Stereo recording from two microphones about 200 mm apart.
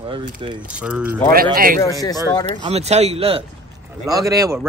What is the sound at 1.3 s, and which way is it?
Speech, 45° right (ahead or behind).